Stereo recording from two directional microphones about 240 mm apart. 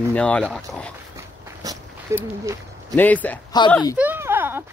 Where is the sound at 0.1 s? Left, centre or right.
Centre.